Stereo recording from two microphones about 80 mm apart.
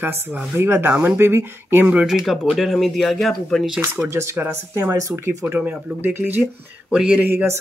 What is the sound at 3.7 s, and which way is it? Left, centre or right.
Speech, right.